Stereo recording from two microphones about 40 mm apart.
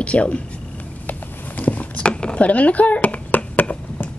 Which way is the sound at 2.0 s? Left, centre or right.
Left.